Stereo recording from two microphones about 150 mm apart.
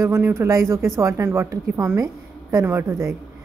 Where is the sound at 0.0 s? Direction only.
20° right (ahead or behind).